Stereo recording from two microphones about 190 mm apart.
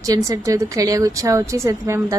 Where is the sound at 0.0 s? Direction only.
15° right (ahead or behind).